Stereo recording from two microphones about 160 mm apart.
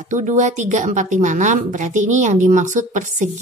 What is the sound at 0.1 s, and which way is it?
A woman's voice, 50° right (ahead or behind).